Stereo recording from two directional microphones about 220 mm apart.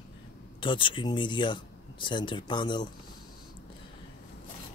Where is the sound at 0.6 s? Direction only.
20° left (ahead or behind).